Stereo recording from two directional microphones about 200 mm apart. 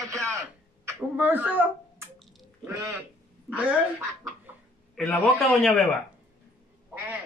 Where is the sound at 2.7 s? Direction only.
15° right (ahead or behind).